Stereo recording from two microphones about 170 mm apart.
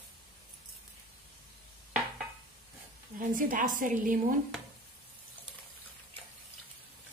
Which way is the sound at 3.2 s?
55° right (ahead or behind).